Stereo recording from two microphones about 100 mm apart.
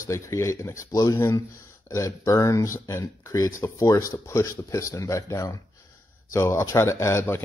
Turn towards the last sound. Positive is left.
turn(degrees=25)  # may be behind; listen again after turning